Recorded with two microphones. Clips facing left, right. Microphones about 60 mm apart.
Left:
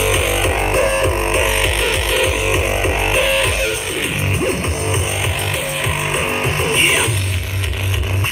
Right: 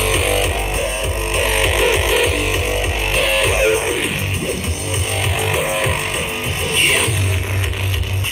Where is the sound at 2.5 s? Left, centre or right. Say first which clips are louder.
Left 3 dB; centre.